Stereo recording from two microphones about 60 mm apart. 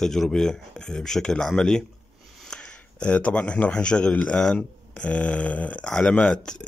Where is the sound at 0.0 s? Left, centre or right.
Centre.